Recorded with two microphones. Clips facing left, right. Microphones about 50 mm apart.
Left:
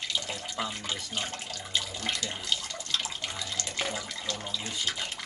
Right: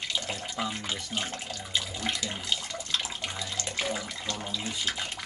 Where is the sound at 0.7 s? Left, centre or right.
Centre.